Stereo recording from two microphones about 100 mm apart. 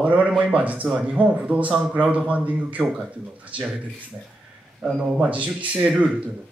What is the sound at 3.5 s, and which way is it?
Speech, 60° right (ahead or behind).